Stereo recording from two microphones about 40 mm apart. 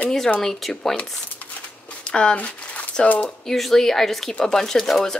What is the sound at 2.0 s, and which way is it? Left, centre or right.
Speech, left.